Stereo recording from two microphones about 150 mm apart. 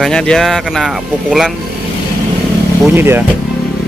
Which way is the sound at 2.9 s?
15° right (ahead or behind).